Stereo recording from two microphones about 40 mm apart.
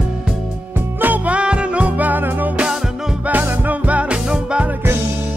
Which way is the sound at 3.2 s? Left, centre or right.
Right.